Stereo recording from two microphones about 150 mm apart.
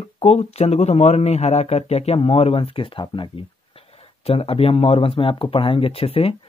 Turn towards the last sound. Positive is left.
turn(degrees=40)  # may be behind; listen again after turning